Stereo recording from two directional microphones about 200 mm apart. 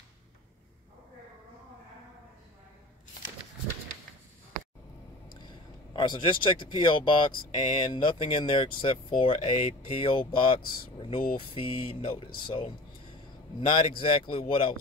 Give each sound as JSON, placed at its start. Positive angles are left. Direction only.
{"t": 5.9, "sound": "speech", "side_deg": 25}
{"t": 13.6, "sound": "speech", "side_deg": 25}